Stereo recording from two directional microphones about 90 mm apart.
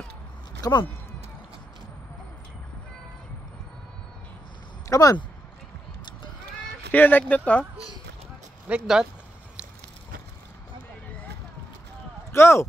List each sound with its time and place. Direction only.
0.6 s speech: 45° left (ahead or behind)
4.8 s a sound: 35° left (ahead or behind)
6.9 s speech: 20° left (ahead or behind)
8.6 s speech: 10° right (ahead or behind)
12.3 s speech: 30° left (ahead or behind)